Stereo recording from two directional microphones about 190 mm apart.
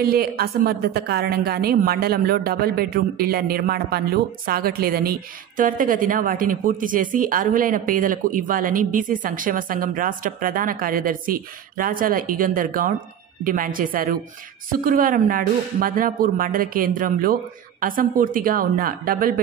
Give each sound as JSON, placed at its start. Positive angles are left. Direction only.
{"t": 0.0, "sound": "speech", "side_deg": -55}